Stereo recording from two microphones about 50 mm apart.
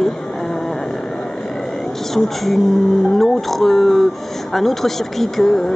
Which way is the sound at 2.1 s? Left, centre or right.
Centre.